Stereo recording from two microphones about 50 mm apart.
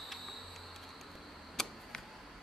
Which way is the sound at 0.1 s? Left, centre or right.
Centre.